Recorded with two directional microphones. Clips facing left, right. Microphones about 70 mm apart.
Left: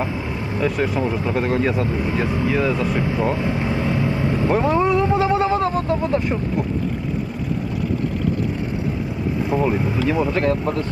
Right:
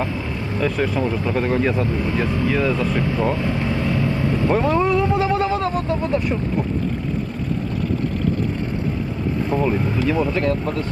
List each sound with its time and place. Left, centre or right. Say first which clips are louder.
0.6 s speech: even; centre
9.6 s speech: even; left
10.3 s speech: left 1 dB; left